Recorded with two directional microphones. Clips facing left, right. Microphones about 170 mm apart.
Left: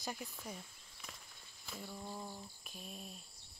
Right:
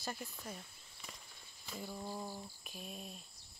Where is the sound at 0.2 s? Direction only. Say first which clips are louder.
Even; centre (ahead or behind).